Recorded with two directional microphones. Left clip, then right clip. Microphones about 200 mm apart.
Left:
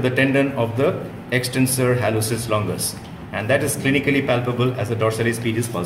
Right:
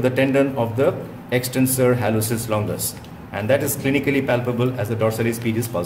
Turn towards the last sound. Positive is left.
turn(degrees=-50)  # may be behind; listen again after turning